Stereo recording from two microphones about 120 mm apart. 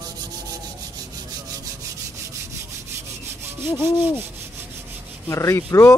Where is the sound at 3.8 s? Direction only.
20° right (ahead or behind).